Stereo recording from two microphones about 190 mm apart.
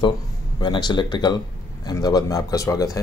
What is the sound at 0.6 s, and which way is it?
Speech, 20° left (ahead or behind).